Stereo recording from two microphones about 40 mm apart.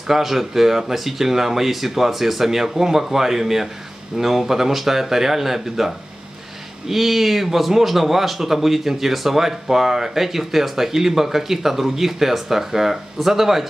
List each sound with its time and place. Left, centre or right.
0.1 s speech: centre